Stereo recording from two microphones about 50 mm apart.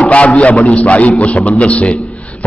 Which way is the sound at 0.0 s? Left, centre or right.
Left.